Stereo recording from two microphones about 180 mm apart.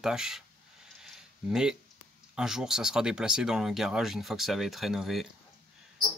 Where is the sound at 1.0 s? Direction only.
Centre (ahead or behind).